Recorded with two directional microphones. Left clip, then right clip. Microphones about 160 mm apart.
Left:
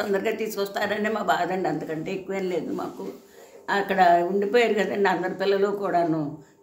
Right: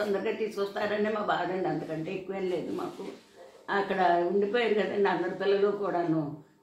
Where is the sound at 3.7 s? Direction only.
25° left (ahead or behind).